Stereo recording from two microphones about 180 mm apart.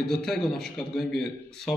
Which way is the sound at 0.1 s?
Centre (ahead or behind).